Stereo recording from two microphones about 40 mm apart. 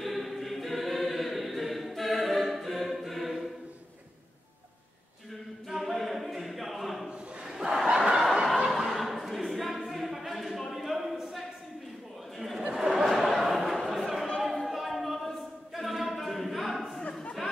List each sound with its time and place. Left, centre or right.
0.0 s choir: centre
5.7 s choir: centre
7.4 s a sound: centre
7.9 s snicker: right
8.6 s a sound: centre
9.8 s a capella: centre
12.4 s chatter: centre
12.9 s a sound: centre
14.7 s a capella: centre